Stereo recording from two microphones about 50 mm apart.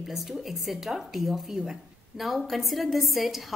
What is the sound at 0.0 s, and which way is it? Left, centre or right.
A woman's voice, centre.